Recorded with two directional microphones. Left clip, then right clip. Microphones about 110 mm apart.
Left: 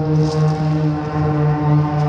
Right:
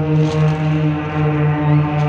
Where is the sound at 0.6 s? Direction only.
20° left (ahead or behind).